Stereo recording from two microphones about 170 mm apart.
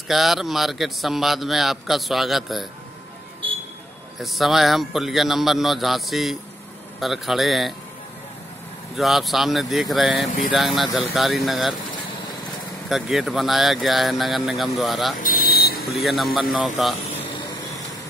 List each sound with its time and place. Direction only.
0.1 s a man's voice: centre (ahead or behind)
4.2 s a man's voice: centre (ahead or behind)
8.9 s a man's voice: centre (ahead or behind)
12.9 s a man's voice: centre (ahead or behind)
15.1 s vehicle: 55° left (ahead or behind)
16.0 s a man's voice: centre (ahead or behind)